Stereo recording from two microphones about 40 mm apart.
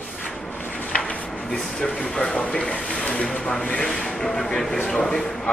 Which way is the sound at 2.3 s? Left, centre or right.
Left.